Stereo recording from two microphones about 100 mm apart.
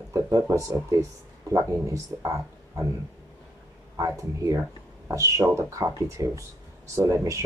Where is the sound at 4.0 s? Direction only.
35° right (ahead or behind).